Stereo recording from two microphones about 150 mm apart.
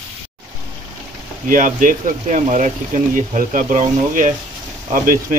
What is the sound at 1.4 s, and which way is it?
Speech, 65° right (ahead or behind).